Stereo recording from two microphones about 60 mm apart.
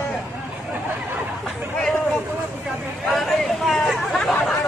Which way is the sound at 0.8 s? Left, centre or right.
Right.